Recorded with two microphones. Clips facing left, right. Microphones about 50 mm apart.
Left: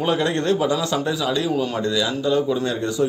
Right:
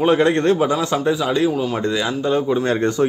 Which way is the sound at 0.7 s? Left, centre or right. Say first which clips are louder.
Right 3 dB; right.